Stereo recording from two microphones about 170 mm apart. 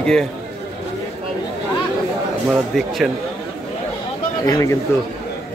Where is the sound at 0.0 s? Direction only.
5° left (ahead or behind).